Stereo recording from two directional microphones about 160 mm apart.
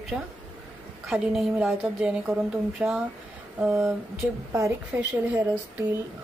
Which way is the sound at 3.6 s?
15° right (ahead or behind).